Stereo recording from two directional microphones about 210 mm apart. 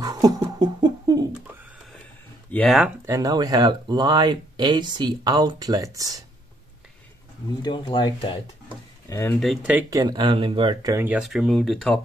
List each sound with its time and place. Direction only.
0.0 s beatboxing: 15° right (ahead or behind)
2.5 s speech: 5° left (ahead or behind)
3.1 s speech: 15° right (ahead or behind)
7.6 s speech: 25° left (ahead or behind)
9.4 s speech: 5° right (ahead or behind)